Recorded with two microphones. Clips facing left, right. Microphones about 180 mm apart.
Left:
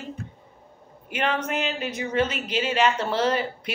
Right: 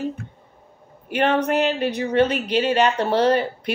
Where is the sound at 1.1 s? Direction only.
35° right (ahead or behind).